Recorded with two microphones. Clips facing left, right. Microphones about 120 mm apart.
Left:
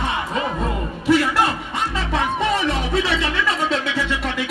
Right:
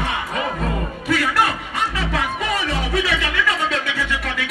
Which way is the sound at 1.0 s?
20° left (ahead or behind).